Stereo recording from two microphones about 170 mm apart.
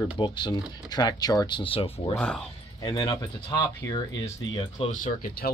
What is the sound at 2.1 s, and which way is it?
Speech, 5° left (ahead or behind).